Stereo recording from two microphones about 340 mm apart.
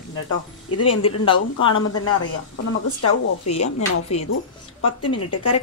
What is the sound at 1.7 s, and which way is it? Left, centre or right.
A woman's voice, left.